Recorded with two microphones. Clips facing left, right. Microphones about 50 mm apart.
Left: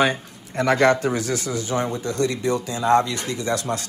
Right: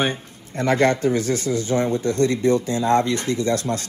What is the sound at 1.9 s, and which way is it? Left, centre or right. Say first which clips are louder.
Speech: right 4 dB; right.